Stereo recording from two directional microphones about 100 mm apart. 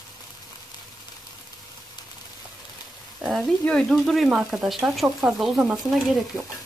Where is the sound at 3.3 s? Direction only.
Centre (ahead or behind).